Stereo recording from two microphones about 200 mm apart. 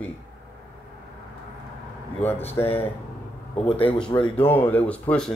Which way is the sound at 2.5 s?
30° left (ahead or behind).